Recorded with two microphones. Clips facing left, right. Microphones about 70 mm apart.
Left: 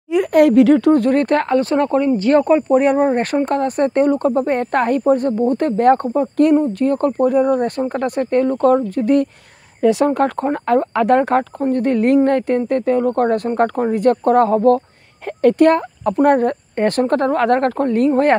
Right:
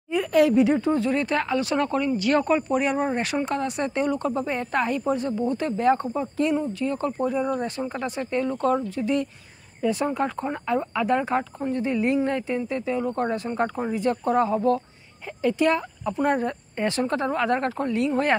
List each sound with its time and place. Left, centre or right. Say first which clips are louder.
0.1 s speech: left 7 dB; left
2.8 s speech: left 9 dB; left
9.8 s speech: left 10 dB; left